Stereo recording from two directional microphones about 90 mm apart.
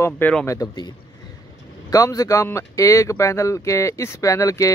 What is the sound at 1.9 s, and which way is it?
Speech, 40° left (ahead or behind).